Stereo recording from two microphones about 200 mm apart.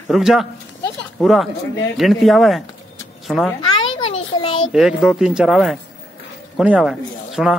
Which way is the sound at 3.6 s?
25° left (ahead or behind).